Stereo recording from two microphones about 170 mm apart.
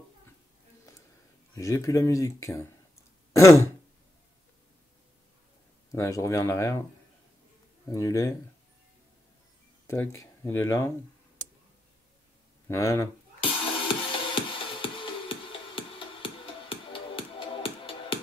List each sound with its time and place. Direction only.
1.5 s speech: 15° left (ahead or behind)
5.9 s speech: 15° left (ahead or behind)
7.9 s speech: 20° left (ahead or behind)
9.8 s speech: 15° left (ahead or behind)
12.6 s speech: 15° left (ahead or behind)
13.4 s music: 30° left (ahead or behind)